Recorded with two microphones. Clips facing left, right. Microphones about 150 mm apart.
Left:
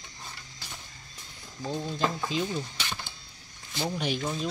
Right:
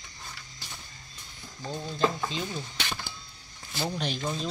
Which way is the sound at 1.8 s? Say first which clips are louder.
Right 3 dB; 5° left (ahead or behind).